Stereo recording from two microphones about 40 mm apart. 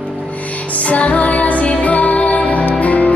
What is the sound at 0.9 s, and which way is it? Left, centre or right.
Music, left.